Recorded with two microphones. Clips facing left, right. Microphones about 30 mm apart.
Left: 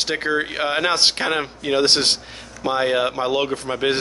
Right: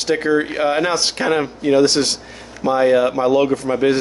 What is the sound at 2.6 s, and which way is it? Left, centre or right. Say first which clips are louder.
Speech: right 5 dB; left.